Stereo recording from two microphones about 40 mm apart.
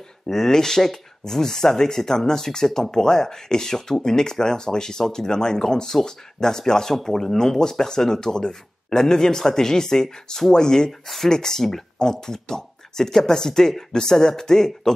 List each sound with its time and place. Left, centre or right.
0.3 s speech: centre
10.9 s speech: centre